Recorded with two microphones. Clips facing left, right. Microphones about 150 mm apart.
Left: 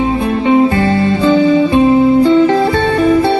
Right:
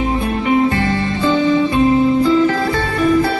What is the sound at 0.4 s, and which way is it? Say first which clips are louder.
Music: left 5 dB; 25° left (ahead or behind).